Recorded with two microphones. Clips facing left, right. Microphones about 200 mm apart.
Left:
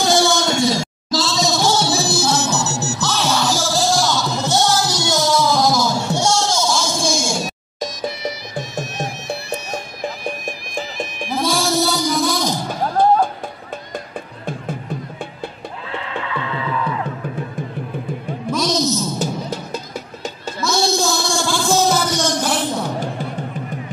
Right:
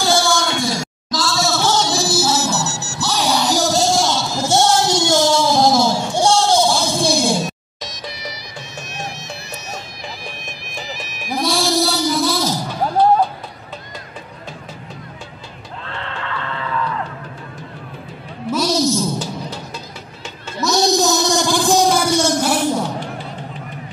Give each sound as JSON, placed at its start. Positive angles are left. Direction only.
{"t": 0.0, "sound": "music", "side_deg": 20}
{"t": 7.1, "sound": "a sound", "side_deg": -35}
{"t": 7.8, "sound": "music", "side_deg": 50}
{"t": 11.4, "sound": "music", "side_deg": 0}
{"t": 13.9, "sound": "music", "side_deg": 50}
{"t": 15.9, "sound": "music", "side_deg": 5}
{"t": 18.5, "sound": "music", "side_deg": -10}
{"t": 19.1, "sound": "music", "side_deg": 45}
{"t": 20.6, "sound": "a sound", "side_deg": -20}